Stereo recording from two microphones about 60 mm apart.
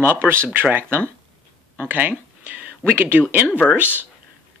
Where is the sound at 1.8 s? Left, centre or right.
Right.